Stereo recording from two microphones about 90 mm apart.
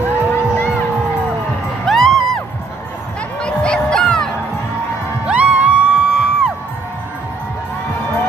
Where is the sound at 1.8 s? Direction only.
Centre (ahead or behind).